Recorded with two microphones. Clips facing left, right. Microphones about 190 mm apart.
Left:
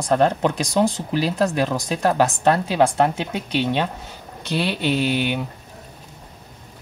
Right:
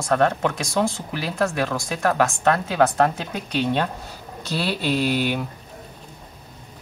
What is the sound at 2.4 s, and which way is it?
Speech, 30° left (ahead or behind).